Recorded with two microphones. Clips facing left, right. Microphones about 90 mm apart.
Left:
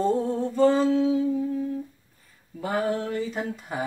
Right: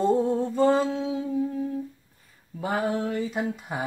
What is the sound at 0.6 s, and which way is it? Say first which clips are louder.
Mantra: left 4 dB; 20° right (ahead or behind).